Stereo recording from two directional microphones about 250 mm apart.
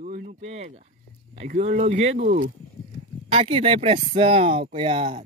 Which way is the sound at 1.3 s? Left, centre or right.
Right.